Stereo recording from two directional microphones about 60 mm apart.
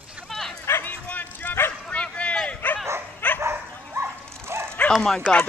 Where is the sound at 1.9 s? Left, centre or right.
Centre.